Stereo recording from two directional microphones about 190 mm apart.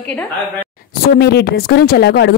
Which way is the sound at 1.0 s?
55° left (ahead or behind).